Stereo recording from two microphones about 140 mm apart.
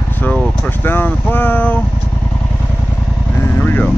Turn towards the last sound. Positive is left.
turn(degrees=15)  # may be behind; listen again after turning